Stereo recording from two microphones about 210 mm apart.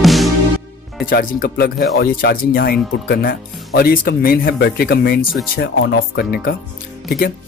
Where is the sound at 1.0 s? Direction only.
40° left (ahead or behind).